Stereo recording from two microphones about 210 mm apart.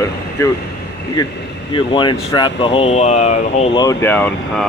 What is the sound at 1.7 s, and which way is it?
Speech, 20° left (ahead or behind).